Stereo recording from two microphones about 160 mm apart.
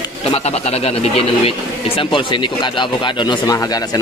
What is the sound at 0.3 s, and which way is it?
Speech, 40° left (ahead or behind).